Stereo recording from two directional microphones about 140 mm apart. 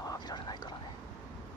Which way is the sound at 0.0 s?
30° left (ahead or behind).